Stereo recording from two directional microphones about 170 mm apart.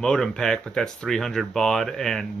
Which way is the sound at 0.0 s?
5° left (ahead or behind).